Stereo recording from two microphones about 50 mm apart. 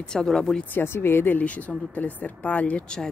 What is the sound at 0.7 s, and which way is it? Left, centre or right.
Speech, left.